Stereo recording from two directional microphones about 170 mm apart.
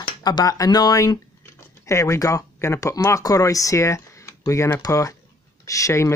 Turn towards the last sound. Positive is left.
turn(degrees=15)  # may be behind; listen again after turning